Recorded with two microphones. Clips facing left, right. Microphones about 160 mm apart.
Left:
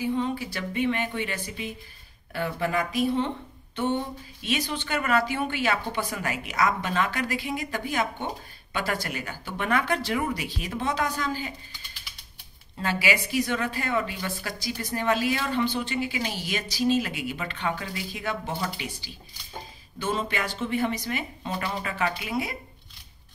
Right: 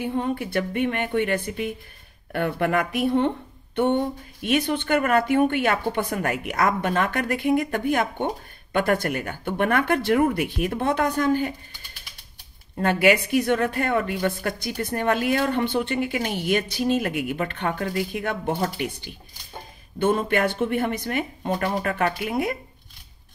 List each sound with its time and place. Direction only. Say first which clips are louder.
0.0 s a woman's voice: right 2 dB; 55° right (ahead or behind)
12.7 s a woman's voice: right 8 dB; 55° right (ahead or behind)